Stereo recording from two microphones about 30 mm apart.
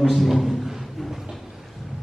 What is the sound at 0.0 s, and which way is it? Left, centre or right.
Speech, centre.